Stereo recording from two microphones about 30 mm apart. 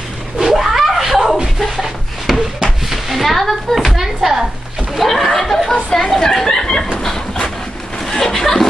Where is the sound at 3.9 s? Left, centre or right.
Centre.